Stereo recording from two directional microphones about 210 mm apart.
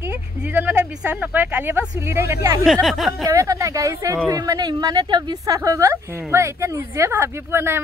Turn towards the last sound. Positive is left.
turn(degrees=-10)  # may be behind; listen again after turning